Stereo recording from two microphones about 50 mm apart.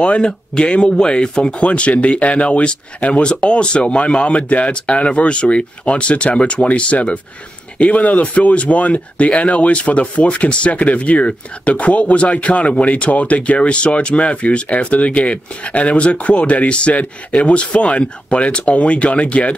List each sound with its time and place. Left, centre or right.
0.0 s speech: left
1.7 s speech: left